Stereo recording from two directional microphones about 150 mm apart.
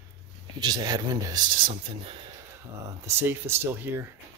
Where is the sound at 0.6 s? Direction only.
25° right (ahead or behind).